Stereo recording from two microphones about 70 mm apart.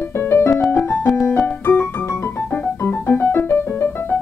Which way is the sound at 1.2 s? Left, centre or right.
Left.